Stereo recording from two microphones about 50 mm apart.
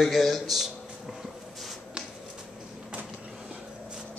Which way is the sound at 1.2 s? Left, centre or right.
Centre.